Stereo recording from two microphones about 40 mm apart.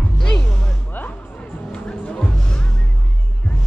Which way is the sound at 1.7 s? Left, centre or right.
Left.